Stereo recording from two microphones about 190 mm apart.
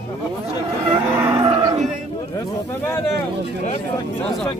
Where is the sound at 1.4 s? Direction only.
25° right (ahead or behind).